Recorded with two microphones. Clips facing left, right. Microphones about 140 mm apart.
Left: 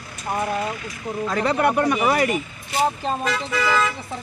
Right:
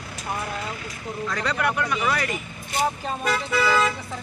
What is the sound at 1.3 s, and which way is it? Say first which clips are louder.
Speech: left 6 dB; 25° left (ahead or behind).